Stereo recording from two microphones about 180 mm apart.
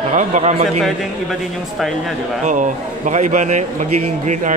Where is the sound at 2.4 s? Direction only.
45° right (ahead or behind).